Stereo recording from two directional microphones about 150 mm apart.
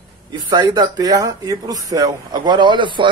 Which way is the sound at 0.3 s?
30° right (ahead or behind).